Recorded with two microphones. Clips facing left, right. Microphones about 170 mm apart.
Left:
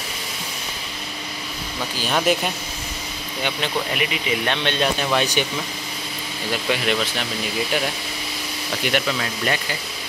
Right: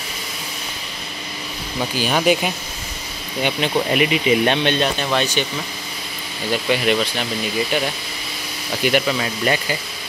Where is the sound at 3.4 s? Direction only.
20° right (ahead or behind).